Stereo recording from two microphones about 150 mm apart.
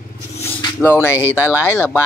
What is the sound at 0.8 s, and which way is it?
Speech, 15° left (ahead or behind).